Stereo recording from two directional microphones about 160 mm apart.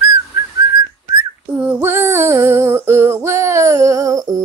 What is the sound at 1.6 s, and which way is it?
Music, 10° right (ahead or behind).